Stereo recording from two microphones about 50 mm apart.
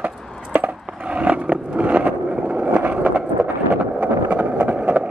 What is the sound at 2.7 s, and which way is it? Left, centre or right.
Skateboard, right.